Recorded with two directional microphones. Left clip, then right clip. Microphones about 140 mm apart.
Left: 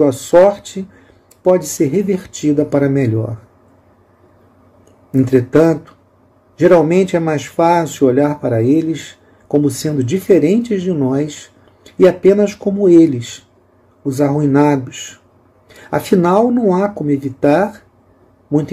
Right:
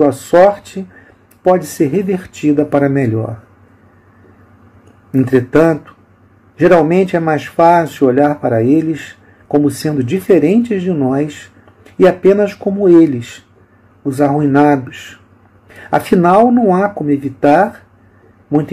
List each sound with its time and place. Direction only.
0.0 s speech: 20° left (ahead or behind)
5.1 s speech: 20° left (ahead or behind)
14.1 s speech: 15° left (ahead or behind)
15.8 s speech: 20° left (ahead or behind)